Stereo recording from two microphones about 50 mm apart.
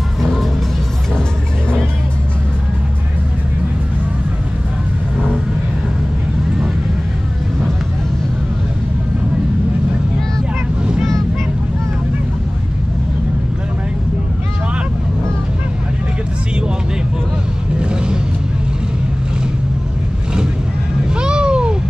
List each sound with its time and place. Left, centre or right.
0.2 s music: centre
5.1 s vehicle: right
17.7 s vehicle: centre
21.1 s cat: centre